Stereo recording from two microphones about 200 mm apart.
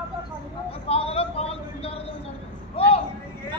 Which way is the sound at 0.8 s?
30° left (ahead or behind).